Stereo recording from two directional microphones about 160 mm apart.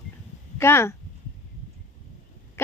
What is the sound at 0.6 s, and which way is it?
Speech, 15° left (ahead or behind).